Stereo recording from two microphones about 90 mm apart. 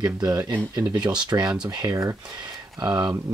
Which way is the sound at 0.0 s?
45° right (ahead or behind).